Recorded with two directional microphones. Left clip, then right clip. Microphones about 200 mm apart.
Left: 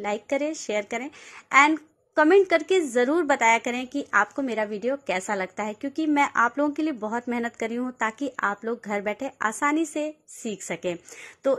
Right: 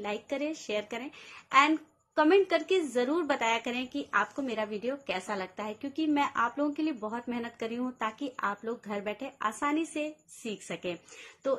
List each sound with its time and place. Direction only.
0.0 s a woman's voice: 35° left (ahead or behind)